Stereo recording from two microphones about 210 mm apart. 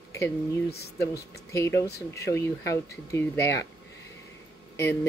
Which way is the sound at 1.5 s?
15° left (ahead or behind).